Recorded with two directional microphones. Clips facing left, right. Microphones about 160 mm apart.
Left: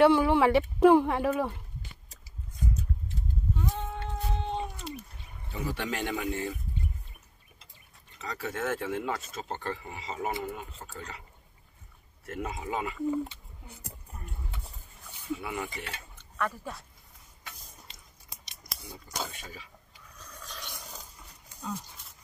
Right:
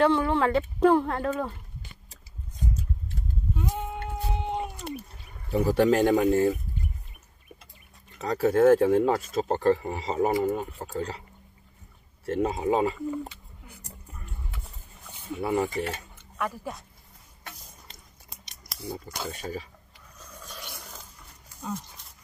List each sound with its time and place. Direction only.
0.0 s speech: 10° left (ahead or behind)
3.5 s a sound: 15° right (ahead or behind)
5.5 s speech: 40° right (ahead or behind)
8.2 s speech: 40° right (ahead or behind)
12.3 s speech: 30° right (ahead or behind)
15.3 s speech: 40° right (ahead or behind)
16.2 s speech: 15° right (ahead or behind)
17.4 s a sound: 50° right (ahead or behind)
18.8 s speech: 50° right (ahead or behind)
20.2 s a sound: 10° right (ahead or behind)